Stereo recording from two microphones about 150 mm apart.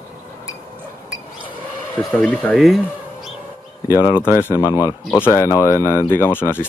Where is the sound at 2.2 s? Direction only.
5° left (ahead or behind).